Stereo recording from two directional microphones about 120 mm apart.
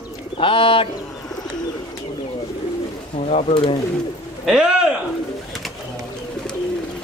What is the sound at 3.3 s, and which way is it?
Speech, 65° left (ahead or behind).